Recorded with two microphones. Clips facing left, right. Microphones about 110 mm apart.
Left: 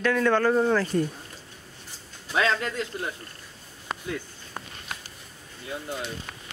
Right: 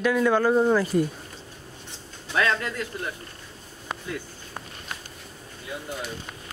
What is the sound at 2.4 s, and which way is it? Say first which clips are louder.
Speech: even; 25° left (ahead or behind).